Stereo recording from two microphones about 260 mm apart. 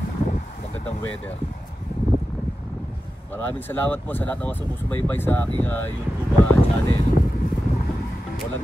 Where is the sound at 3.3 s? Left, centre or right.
Centre.